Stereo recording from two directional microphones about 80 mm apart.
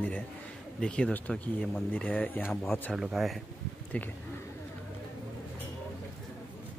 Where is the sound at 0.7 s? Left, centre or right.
Centre.